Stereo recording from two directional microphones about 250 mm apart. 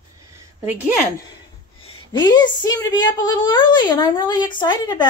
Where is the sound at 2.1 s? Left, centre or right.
Centre.